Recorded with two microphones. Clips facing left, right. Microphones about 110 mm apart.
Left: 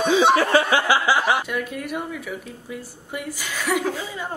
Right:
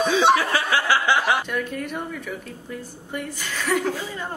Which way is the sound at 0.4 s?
25° left (ahead or behind).